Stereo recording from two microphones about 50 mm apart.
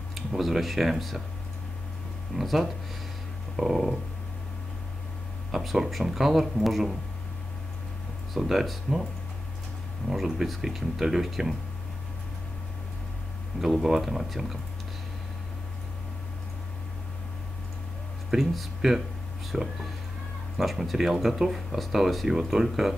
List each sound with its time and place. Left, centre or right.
0.4 s speech: centre
2.3 s speech: centre
5.5 s speech: centre
8.3 s speech: centre
10.0 s speech: centre
13.6 s speech: centre
18.3 s speech: centre